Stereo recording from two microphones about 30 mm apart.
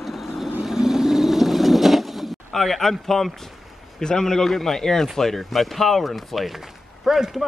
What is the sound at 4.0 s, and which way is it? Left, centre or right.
Speech, left.